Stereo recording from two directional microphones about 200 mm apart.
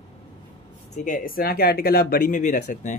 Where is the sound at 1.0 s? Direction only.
40° left (ahead or behind).